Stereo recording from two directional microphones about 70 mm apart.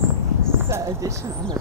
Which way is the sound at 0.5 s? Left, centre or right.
Right.